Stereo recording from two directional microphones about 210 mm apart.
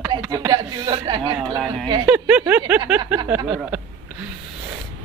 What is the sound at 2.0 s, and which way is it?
Speech, 10° right (ahead or behind).